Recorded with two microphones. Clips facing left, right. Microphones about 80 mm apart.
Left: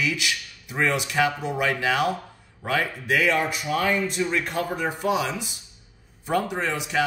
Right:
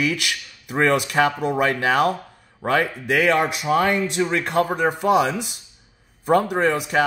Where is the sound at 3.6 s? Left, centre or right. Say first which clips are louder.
Right 7 dB; right.